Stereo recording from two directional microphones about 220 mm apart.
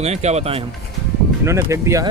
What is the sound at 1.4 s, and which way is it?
Speech, 10° right (ahead or behind).